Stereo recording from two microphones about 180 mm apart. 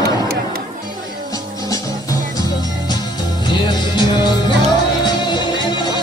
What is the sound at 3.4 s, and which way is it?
Music, 25° left (ahead or behind).